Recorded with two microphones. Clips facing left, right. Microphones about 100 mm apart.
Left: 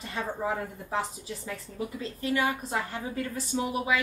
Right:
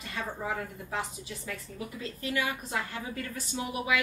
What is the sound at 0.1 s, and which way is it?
Speech, 30° left (ahead or behind).